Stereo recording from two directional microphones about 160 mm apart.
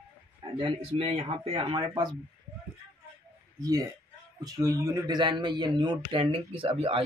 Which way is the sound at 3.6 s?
25° right (ahead or behind).